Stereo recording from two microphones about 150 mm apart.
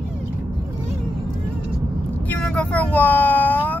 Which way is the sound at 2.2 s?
5° left (ahead or behind).